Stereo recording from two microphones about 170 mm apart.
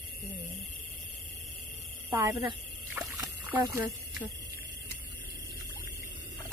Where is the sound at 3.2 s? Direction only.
15° right (ahead or behind).